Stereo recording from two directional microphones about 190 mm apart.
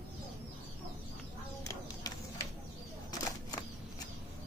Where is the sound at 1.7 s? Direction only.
15° left (ahead or behind).